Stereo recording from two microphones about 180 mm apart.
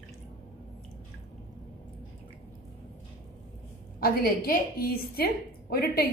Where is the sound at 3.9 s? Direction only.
55° left (ahead or behind).